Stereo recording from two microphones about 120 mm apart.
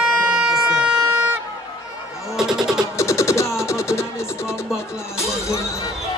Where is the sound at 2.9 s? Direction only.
25° left (ahead or behind).